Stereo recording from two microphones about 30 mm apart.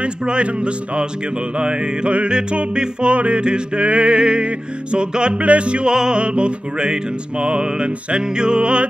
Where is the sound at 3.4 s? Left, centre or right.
Right.